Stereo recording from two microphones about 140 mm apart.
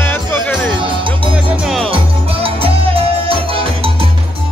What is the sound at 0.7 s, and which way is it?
Music, 35° right (ahead or behind).